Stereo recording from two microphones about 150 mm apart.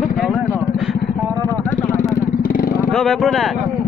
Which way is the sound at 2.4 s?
65° left (ahead or behind).